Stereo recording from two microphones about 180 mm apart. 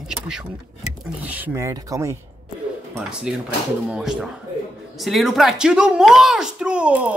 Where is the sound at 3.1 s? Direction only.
5° right (ahead or behind).